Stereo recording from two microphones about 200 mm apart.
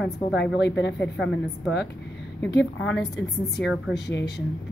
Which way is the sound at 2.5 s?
65° left (ahead or behind).